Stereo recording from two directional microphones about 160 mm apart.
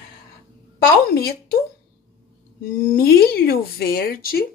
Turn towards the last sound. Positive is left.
turn(degrees=70)  # may be behind; listen again after turning